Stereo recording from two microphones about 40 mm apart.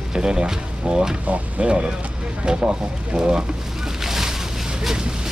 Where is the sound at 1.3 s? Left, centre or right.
Right.